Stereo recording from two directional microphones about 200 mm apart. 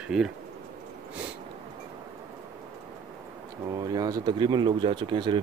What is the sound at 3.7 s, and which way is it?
Speech, 20° right (ahead or behind).